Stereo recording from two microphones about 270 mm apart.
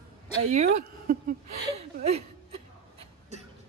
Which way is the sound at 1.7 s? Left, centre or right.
Right.